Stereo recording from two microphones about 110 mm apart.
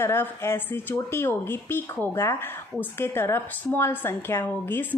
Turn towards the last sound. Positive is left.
turn(degrees=20)  # may be behind; listen again after turning